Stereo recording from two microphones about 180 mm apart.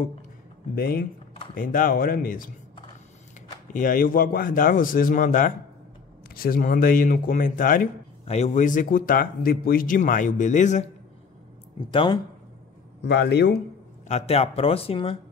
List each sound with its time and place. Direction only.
0.7 s speech: 55° left (ahead or behind)
3.7 s speech: 50° left (ahead or behind)
8.3 s speech: 40° left (ahead or behind)
11.8 s speech: 25° left (ahead or behind)
13.0 s a man's voice: 65° left (ahead or behind)
14.0 s speech: 35° left (ahead or behind)